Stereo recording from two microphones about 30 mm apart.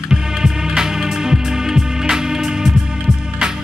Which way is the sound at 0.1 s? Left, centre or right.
Centre.